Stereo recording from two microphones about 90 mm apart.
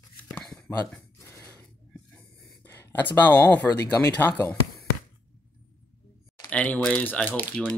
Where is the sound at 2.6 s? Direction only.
25° left (ahead or behind).